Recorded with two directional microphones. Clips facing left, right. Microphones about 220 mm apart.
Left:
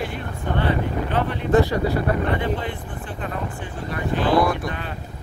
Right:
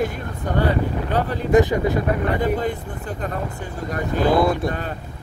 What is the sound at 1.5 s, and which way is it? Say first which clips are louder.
Speech: right 2 dB; 20° right (ahead or behind).